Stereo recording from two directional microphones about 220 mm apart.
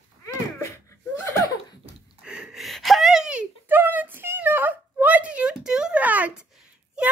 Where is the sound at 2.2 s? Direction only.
5° right (ahead or behind).